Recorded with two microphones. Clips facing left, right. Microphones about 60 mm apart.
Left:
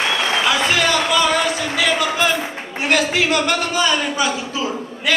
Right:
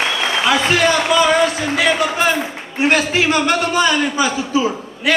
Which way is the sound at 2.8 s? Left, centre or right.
Right.